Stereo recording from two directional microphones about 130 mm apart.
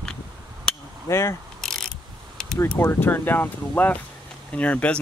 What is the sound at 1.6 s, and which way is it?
Pulleys, 5° left (ahead or behind).